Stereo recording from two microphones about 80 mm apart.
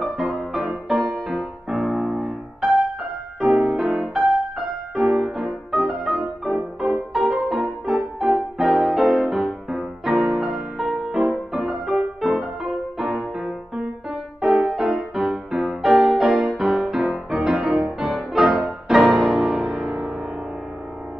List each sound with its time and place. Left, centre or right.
0.0 s music: centre